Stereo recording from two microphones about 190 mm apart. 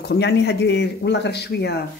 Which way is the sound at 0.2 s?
65° left (ahead or behind).